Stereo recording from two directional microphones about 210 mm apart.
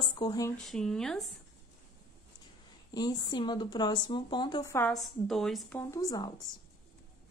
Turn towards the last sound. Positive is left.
turn(degrees=20)  # may be behind; listen again after turning